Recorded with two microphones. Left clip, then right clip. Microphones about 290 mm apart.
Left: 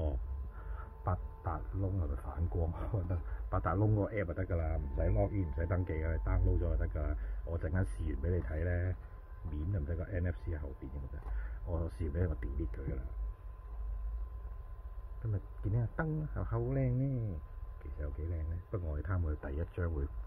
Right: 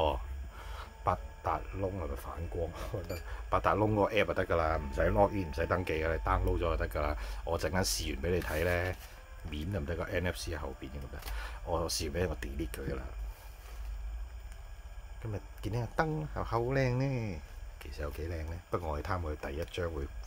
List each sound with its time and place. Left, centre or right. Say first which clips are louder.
1.0 s speech: right 8 dB; centre
2.3 s speech: right 1 dB; centre
3.4 s speech: right 7 dB; centre
11.7 s speech: right 8 dB; centre
15.6 s speech: right 7 dB; centre